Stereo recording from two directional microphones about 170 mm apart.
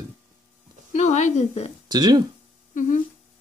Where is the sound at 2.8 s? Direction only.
50° left (ahead or behind).